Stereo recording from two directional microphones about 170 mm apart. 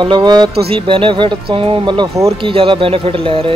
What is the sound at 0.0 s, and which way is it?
Speech, 25° right (ahead or behind).